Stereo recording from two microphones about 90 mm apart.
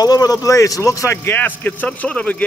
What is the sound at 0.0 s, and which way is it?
Speech, 45° left (ahead or behind).